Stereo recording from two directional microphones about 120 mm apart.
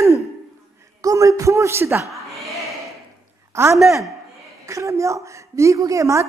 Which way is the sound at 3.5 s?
25° right (ahead or behind).